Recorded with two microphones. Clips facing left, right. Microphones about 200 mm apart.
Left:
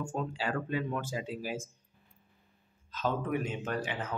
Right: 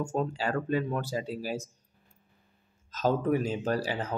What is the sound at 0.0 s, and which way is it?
Speech, 40° right (ahead or behind).